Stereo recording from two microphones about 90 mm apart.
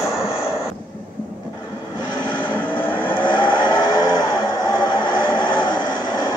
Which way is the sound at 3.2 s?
65° left (ahead or behind).